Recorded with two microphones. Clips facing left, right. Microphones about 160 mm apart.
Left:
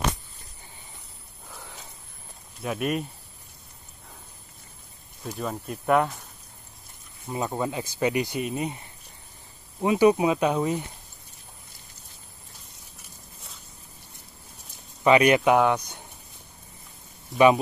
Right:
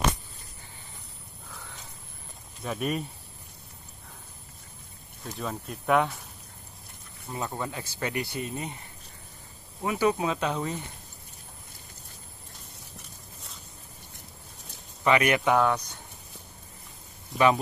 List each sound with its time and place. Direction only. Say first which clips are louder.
1.5 s a sound: left 2 dB; 15° left (ahead or behind)
2.6 s speech: left 3 dB; 5° left (ahead or behind)
5.2 s speech: left 3 dB; 5° left (ahead or behind)
7.2 s speech: left 5 dB; 15° left (ahead or behind)
9.8 s speech: left 6 dB; 20° left (ahead or behind)
15.0 s speech: left 5 dB; 20° left (ahead or behind)